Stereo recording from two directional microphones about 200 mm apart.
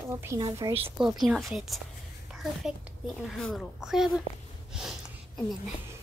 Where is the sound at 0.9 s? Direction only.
Centre (ahead or behind).